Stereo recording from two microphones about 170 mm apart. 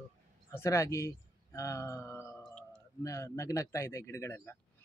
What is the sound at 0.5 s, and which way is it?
Speech, 15° left (ahead or behind).